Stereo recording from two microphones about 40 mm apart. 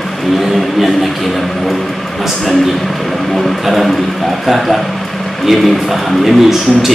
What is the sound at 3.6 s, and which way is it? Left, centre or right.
Speech, centre.